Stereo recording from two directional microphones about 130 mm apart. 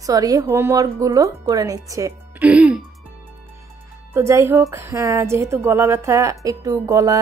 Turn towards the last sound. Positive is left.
turn(degrees=-25)  # may be behind; listen again after turning